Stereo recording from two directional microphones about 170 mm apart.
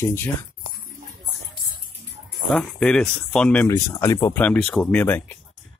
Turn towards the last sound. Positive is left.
turn(degrees=10)  # may be behind; listen again after turning